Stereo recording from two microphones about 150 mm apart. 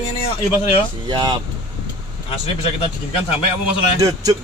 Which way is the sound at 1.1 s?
30° right (ahead or behind).